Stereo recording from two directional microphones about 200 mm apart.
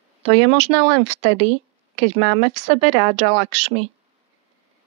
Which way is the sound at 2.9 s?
30° right (ahead or behind).